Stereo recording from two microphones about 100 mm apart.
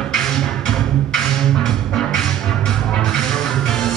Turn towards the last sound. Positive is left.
turn(degrees=5)  # may be behind; listen again after turning